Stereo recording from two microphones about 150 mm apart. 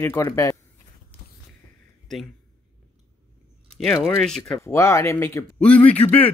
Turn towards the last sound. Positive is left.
turn(degrees=10)  # may be behind; listen again after turning